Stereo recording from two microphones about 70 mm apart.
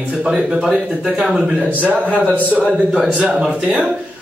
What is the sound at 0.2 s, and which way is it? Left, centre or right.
Speech, centre.